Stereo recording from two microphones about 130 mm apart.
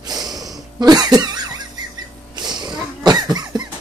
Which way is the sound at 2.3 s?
35° right (ahead or behind).